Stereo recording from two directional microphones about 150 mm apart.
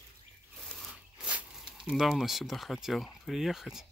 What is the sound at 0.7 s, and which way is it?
Tearing, centre (ahead or behind).